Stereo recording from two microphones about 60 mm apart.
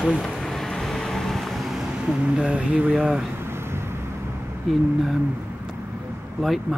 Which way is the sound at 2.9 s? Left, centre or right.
Centre.